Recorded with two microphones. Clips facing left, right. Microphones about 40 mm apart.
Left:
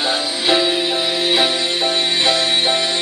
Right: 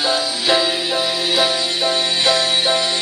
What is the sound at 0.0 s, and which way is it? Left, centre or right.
Music, left.